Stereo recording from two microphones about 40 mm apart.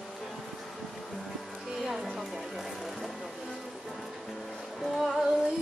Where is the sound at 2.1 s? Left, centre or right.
Centre.